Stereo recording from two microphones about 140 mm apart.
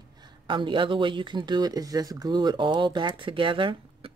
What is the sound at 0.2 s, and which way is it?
Speech, 35° right (ahead or behind).